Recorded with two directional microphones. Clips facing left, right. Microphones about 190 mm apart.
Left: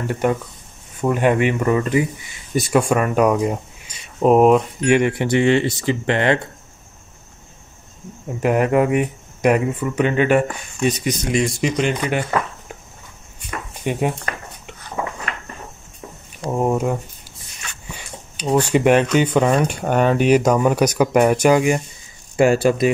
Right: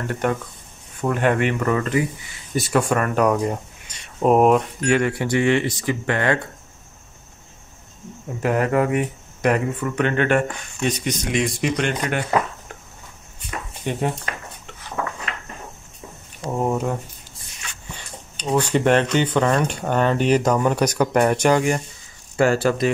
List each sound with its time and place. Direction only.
0.0 s speech: 10° left (ahead or behind)
4.2 s speech: centre (ahead or behind)
4.7 s speech: 15° left (ahead or behind)
8.4 s speech: 20° left (ahead or behind)
13.9 s speech: 10° left (ahead or behind)
14.3 s a sound: 50° left (ahead or behind)
15.0 s a sound: 10° left (ahead or behind)
17.9 s speech: 10° left (ahead or behind)